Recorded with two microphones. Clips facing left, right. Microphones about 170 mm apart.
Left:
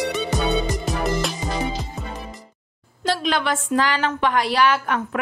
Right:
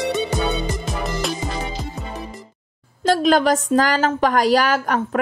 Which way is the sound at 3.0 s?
45° right (ahead or behind).